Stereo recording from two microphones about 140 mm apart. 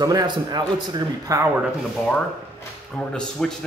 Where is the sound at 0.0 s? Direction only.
25° right (ahead or behind).